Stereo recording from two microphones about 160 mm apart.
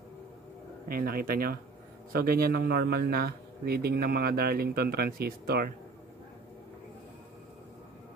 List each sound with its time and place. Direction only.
0.8 s a man's voice: 65° right (ahead or behind)